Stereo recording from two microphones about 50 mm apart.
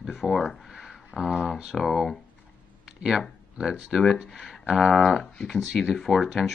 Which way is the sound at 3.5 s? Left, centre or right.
Centre.